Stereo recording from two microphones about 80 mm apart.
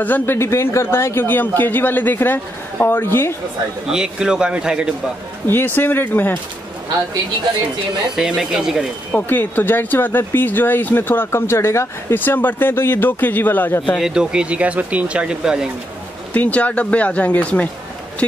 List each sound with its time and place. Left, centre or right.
0.0 s speech: left
3.8 s speech: centre
5.5 s speech: left
8.2 s speech: centre
9.1 s speech: left
13.9 s speech: centre
16.3 s speech: centre